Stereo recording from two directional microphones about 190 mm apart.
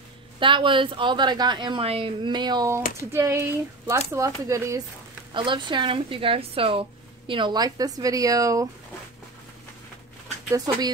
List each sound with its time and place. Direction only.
0.4 s speech: 25° right (ahead or behind)